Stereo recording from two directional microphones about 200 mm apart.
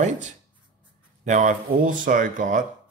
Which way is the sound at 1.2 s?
40° right (ahead or behind).